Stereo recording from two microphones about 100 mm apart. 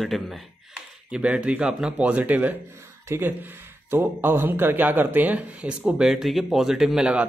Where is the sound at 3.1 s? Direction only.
25° right (ahead or behind).